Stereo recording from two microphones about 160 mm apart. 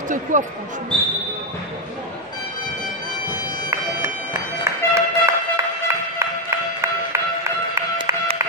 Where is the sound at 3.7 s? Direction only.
15° right (ahead or behind).